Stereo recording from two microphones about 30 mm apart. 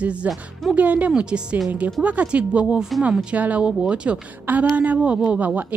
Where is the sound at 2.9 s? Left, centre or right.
Centre.